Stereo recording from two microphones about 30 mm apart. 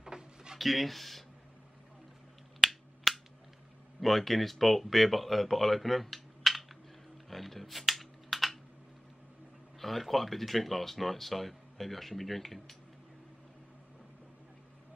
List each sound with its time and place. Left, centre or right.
0.0 s a sound: right
0.6 s speech: centre
2.6 s finger snapping: centre
3.1 s a sound: centre
4.0 s speech: centre
7.2 s computer keyboard: centre
9.8 s speech: centre